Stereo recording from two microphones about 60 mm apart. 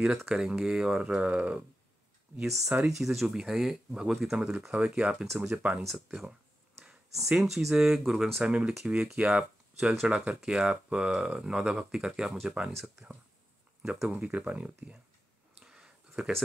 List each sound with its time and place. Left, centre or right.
0.3 s speech: centre
1.2 s speech: right
2.3 s speech: centre
5.2 s speech: centre
8.5 s speech: centre
14.0 s speech: right
15.6 s a sound: centre